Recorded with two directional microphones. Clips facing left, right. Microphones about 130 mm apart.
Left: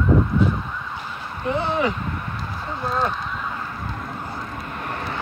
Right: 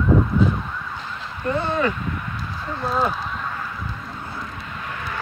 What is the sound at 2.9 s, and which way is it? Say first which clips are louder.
Speech: right 1 dB; 5° right (ahead or behind).